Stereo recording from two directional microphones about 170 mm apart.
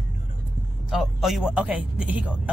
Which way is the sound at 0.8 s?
Centre (ahead or behind).